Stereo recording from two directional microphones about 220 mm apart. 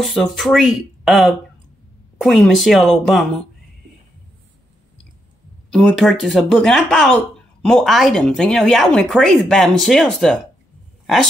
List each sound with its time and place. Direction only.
0.0 s speech: centre (ahead or behind)
5.7 s speech: centre (ahead or behind)